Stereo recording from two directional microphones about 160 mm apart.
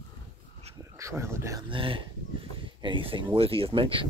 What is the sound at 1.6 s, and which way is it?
Speech, 35° right (ahead or behind).